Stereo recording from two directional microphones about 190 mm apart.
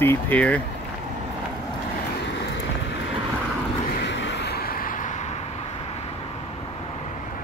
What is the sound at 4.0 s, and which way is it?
Vehicle, 70° left (ahead or behind).